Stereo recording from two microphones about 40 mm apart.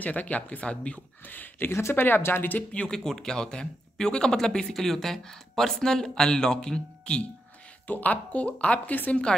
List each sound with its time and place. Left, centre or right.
0.0 s speech: left
1.2 s speech: left
1.7 s speech: left
2.9 s speech: centre
7.8 s speech: left